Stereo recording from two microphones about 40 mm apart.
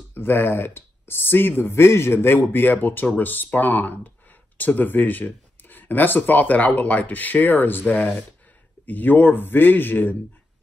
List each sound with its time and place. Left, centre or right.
0.1 s speech: left
1.6 s a man's voice: left
7.8 s speech: left
8.8 s a man's voice: left